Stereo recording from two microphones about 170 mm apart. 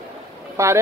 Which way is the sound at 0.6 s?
15° right (ahead or behind).